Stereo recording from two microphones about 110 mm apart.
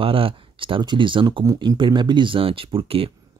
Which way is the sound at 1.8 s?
45° right (ahead or behind).